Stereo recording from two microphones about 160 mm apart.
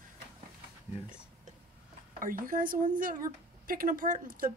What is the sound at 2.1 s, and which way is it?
Speech, 60° right (ahead or behind).